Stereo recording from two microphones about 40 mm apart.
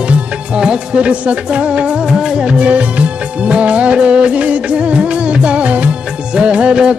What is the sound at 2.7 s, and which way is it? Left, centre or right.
Music of bollywood, right.